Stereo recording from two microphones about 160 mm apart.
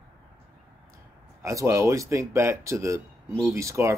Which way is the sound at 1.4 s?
15° right (ahead or behind).